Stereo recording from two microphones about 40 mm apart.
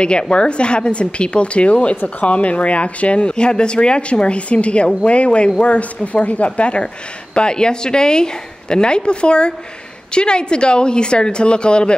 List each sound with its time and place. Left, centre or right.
0.0 s speech: left